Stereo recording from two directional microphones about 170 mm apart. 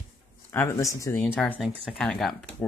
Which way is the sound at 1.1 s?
5° left (ahead or behind).